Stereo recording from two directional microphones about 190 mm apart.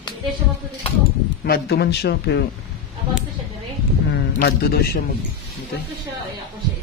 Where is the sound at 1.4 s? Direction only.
60° left (ahead or behind).